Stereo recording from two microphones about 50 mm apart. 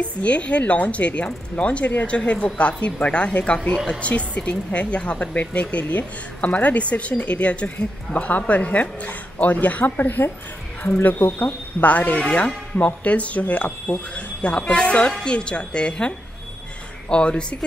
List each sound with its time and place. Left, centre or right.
0.0 s a woman's voice: left